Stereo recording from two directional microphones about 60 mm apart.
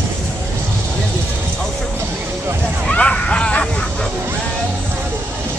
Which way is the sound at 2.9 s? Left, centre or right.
Centre.